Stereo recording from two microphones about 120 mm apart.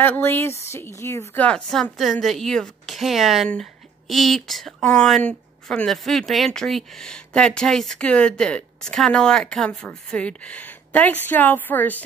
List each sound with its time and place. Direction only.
0.0 s a woman's voice: 15° left (ahead or behind)
1.4 s a woman's voice: 5° left (ahead or behind)